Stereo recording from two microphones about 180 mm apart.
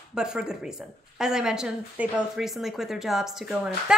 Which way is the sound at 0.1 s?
5° right (ahead or behind).